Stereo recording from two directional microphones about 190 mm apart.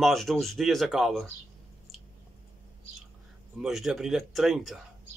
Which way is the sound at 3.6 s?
Centre (ahead or behind).